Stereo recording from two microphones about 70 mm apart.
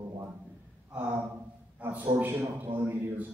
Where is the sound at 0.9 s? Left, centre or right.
Right.